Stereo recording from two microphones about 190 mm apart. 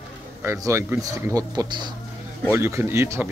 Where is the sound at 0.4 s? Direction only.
15° right (ahead or behind).